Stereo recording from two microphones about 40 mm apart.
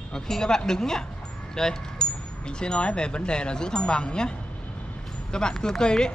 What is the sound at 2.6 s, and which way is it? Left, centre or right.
Speech, left.